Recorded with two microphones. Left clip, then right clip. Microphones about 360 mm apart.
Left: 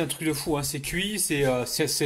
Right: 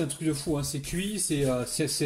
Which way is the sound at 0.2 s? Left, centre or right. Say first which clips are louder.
Left 3 dB; left.